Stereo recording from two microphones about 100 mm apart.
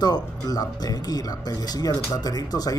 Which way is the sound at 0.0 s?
40° left (ahead or behind).